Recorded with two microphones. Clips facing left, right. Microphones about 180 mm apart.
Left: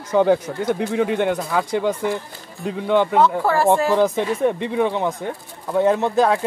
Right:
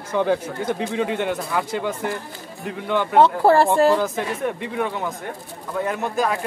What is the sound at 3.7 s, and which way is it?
Speech, 20° left (ahead or behind).